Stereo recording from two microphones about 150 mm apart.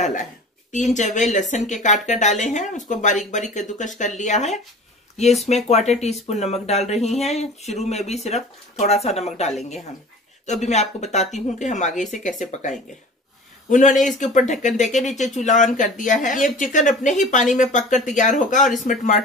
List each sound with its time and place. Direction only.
0.0 s a sound: 55° left (ahead or behind)
0.9 s speech: 55° left (ahead or behind)
5.7 s speech: 50° left (ahead or behind)